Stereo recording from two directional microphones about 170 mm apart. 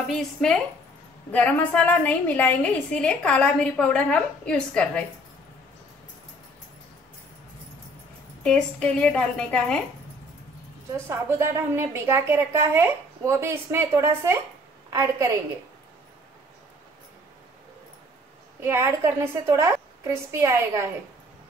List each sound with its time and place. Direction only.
0.1 s a woman's voice: 5° left (ahead or behind)
8.5 s a woman's voice: 5° left (ahead or behind)
11.1 s a woman's voice: 15° right (ahead or behind)
18.6 s a woman's voice: 15° right (ahead or behind)